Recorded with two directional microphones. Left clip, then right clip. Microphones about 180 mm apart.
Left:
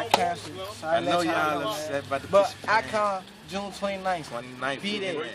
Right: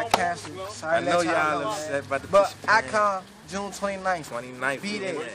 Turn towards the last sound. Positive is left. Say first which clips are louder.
# even
turn(degrees=0)  # may be behind; listen again after turning